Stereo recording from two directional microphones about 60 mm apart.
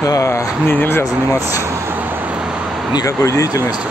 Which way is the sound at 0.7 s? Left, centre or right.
Left.